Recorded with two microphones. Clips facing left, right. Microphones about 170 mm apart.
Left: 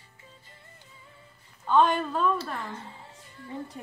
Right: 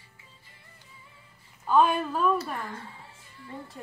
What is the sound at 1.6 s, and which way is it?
Speech, 5° right (ahead or behind).